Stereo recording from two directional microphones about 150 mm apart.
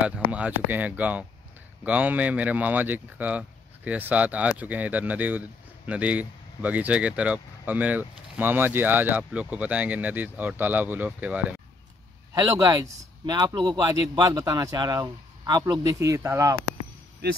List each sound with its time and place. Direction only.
0.3 s speech: 10° right (ahead or behind)
12.4 s speech: 25° right (ahead or behind)